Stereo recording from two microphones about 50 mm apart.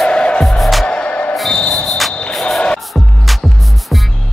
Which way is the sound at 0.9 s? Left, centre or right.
Left.